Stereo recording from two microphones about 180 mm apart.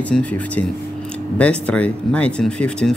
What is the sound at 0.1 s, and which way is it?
Speech, 5° left (ahead or behind).